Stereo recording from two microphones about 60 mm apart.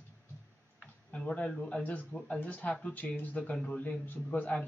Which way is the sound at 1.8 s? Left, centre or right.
Left.